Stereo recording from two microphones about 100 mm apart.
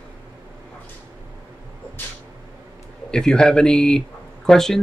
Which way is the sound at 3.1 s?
10° left (ahead or behind).